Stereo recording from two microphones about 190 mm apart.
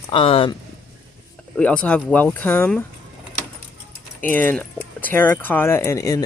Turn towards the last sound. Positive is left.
turn(degrees=15)  # may be behind; listen again after turning